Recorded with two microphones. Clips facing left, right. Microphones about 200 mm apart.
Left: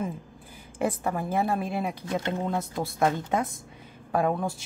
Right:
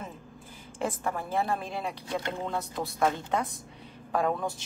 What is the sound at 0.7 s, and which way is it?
Speech, 15° left (ahead or behind).